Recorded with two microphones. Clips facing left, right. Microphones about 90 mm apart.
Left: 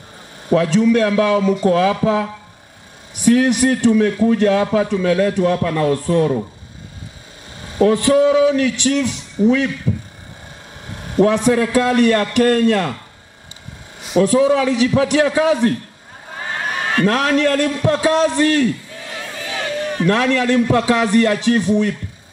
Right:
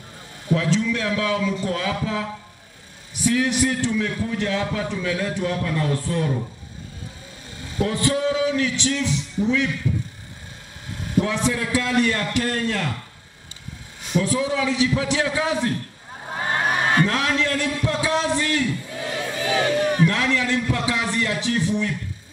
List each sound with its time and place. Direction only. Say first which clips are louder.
0.5 s a man's voice: left 8 dB; 60° left (ahead or behind)
7.6 s a man's voice: left 9 dB; 55° left (ahead or behind)
11.0 s a man's voice: left 8 dB; 55° left (ahead or behind)
14.2 s a man's voice: left 10 dB; 60° left (ahead or behind)
17.0 s a man's voice: left 6 dB; 55° left (ahead or behind)
19.4 s a sound: right 3 dB; 20° right (ahead or behind)
20.1 s a man's voice: left 7 dB; 55° left (ahead or behind)